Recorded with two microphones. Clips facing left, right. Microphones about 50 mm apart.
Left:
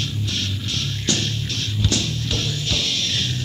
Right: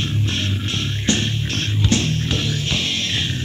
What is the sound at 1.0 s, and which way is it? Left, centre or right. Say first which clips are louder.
Music: right 4 dB; right.